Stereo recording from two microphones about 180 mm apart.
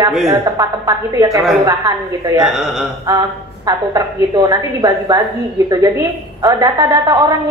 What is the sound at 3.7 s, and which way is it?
A woman's voice, 20° right (ahead or behind).